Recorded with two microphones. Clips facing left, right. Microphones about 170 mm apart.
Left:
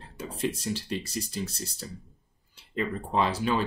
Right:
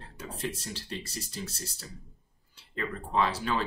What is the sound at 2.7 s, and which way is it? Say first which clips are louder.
Speech: left 3 dB; 20° left (ahead or behind).